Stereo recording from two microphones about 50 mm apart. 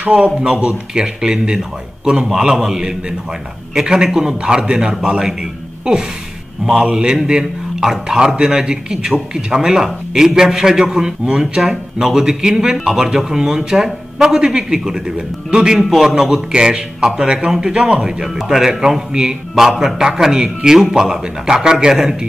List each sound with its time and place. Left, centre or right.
0.1 s speech: right
6.7 s speech: centre
15.8 s speech: centre